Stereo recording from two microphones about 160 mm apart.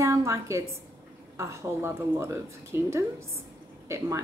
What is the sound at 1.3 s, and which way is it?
A woman's voice, 15° right (ahead or behind).